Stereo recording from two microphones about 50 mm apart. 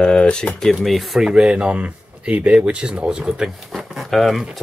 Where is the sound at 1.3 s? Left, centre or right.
Centre.